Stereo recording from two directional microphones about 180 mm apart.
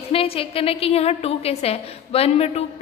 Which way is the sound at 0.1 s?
30° left (ahead or behind).